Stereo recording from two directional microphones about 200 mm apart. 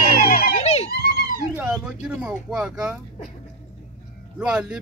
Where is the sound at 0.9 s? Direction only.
50° left (ahead or behind).